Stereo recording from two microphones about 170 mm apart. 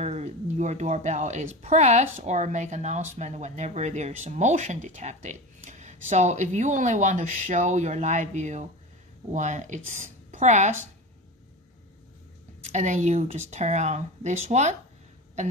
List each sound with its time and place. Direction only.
0.0 s a woman's voice: 40° right (ahead or behind)
12.6 s speech: 45° right (ahead or behind)